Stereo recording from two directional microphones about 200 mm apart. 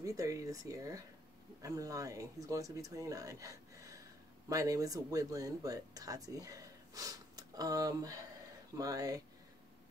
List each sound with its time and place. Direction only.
0.0 s speech: 15° right (ahead or behind)